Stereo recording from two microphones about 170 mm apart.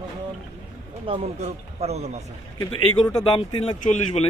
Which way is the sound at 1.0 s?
35° right (ahead or behind).